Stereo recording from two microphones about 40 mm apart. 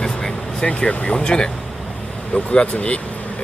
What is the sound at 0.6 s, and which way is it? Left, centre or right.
Speech, left.